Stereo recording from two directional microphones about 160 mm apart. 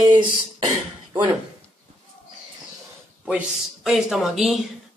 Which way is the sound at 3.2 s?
5° right (ahead or behind).